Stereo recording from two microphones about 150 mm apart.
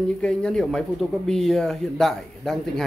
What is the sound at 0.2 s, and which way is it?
Speech, 5° left (ahead or behind).